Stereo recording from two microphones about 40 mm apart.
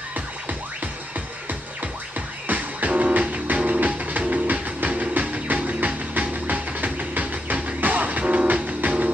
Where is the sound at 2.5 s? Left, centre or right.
Right.